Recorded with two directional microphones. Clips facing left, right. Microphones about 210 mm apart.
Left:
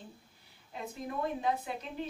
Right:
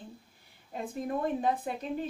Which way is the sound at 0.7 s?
50° right (ahead or behind).